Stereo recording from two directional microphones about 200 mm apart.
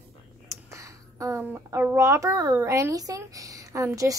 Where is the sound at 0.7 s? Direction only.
15° right (ahead or behind).